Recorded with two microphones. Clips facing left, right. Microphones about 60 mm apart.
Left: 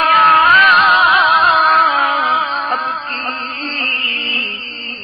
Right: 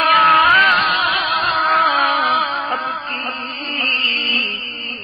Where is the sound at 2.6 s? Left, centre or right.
Left.